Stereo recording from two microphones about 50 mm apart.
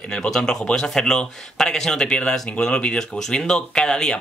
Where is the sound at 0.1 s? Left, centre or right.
Centre.